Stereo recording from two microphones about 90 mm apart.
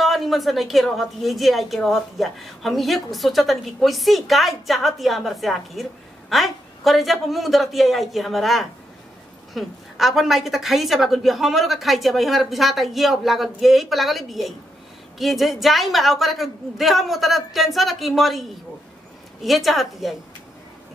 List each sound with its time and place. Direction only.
0.0 s a woman's voice: centre (ahead or behind)